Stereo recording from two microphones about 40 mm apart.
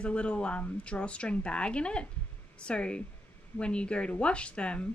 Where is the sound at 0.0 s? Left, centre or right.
Left.